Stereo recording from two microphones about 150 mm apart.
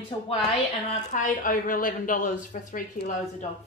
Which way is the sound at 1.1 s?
60° left (ahead or behind).